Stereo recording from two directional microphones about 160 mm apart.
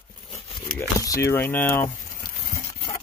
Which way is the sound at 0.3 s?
35° left (ahead or behind).